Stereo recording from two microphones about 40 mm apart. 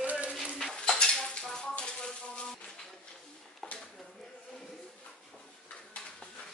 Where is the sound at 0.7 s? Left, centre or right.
Centre.